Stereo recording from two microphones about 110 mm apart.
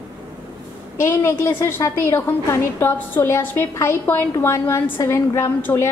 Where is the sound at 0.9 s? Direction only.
25° left (ahead or behind).